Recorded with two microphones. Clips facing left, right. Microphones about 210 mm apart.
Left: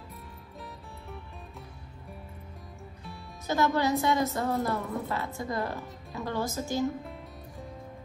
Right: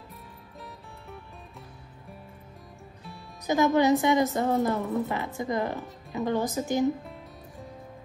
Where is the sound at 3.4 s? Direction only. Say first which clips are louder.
Right 5 dB; 15° right (ahead or behind).